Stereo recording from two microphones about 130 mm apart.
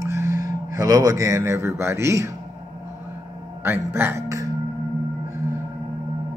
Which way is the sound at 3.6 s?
15° right (ahead or behind).